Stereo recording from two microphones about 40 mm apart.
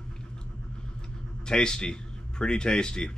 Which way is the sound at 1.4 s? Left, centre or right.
Centre.